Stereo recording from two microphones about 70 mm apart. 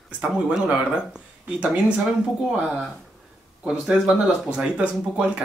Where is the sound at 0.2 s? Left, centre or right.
Centre.